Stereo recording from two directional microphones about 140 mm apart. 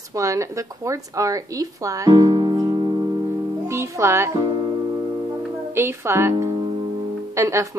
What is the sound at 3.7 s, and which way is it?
Music, 20° right (ahead or behind).